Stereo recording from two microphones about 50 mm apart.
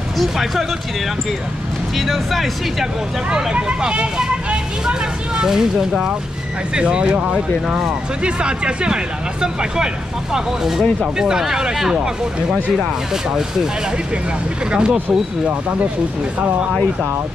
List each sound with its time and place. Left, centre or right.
0.2 s speech: centre
2.0 s speech: centre; by 7.3 s right
7.6 s speech: centre
8.2 s speech: centre
14.7 s speech: centre